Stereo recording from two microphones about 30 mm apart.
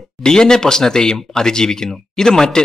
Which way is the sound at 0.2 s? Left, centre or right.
Left.